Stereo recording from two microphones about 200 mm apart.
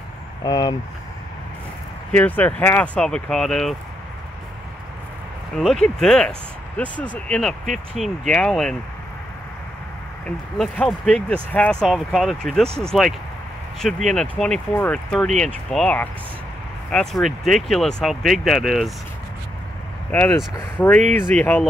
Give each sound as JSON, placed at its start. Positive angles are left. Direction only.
{"t": 0.4, "sound": "speech", "side_deg": 20}
{"t": 2.1, "sound": "speech", "side_deg": 10}
{"t": 5.6, "sound": "speech", "side_deg": 0}
{"t": 7.6, "sound": "speech", "side_deg": -40}
{"t": 8.0, "sound": "speech", "side_deg": 0}
{"t": 10.2, "sound": "speech", "side_deg": 5}
{"t": 20.1, "sound": "speech", "side_deg": 10}